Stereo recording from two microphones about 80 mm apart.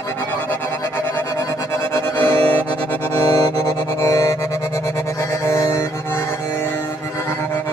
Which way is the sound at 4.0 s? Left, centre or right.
Left.